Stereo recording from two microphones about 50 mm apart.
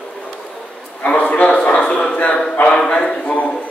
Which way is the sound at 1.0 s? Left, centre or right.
Left.